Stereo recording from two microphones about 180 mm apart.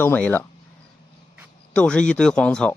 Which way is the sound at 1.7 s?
5° left (ahead or behind).